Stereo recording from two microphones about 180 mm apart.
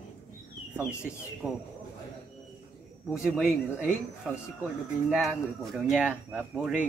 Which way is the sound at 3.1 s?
5° right (ahead or behind).